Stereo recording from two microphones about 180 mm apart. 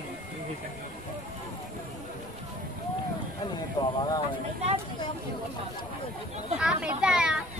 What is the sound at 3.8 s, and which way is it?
Speech, 25° left (ahead or behind).